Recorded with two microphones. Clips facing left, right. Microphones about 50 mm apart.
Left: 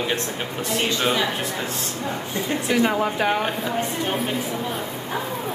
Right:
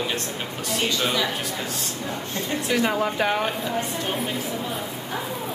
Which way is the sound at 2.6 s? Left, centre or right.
Centre.